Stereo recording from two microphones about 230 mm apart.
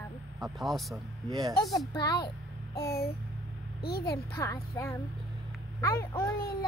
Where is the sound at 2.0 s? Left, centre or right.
Centre.